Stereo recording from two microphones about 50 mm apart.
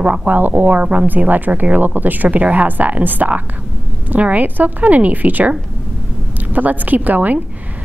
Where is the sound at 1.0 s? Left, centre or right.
Right.